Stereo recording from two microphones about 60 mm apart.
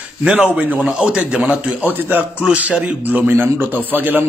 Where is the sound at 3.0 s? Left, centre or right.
Right.